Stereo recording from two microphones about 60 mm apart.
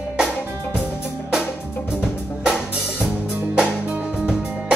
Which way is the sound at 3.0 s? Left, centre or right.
Right.